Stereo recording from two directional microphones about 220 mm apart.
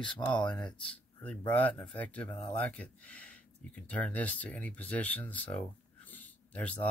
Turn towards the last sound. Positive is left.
turn(degrees=5)  # may be behind; listen again after turning